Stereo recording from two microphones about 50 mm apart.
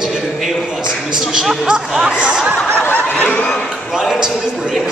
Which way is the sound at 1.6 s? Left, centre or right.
Centre.